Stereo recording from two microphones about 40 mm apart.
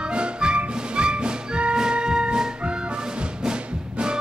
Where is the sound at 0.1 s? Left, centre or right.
Right.